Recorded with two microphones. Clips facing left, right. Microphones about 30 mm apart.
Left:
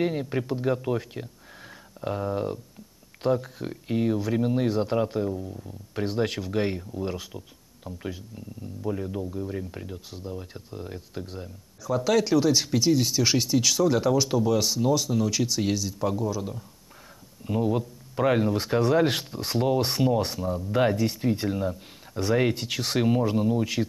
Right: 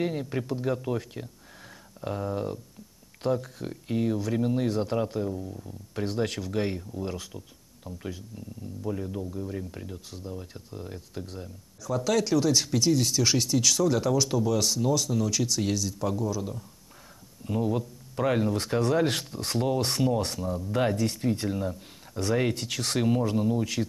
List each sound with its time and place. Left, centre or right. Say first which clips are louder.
0.0 s speech: left 3 dB; centre